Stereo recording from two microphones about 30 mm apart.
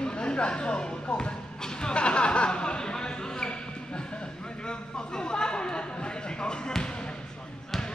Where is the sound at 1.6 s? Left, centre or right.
Left.